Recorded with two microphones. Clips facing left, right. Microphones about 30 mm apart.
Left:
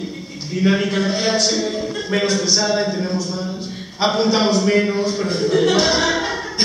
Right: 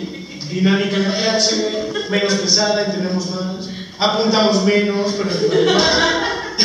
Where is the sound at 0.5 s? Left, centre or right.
Centre.